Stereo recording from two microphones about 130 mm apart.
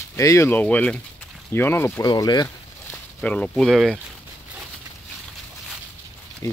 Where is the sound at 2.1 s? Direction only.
30° left (ahead or behind).